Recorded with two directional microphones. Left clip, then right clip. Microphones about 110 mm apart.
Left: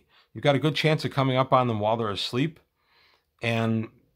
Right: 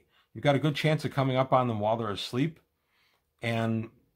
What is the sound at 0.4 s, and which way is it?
Speech, 35° left (ahead or behind).